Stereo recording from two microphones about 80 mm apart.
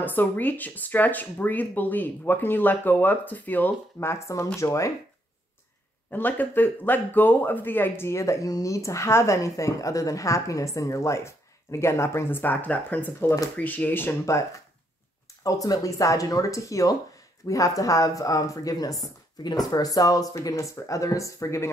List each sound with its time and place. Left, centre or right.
0.0 s speech: left
4.1 s speech: left
6.0 s speech: left
15.4 s speech: left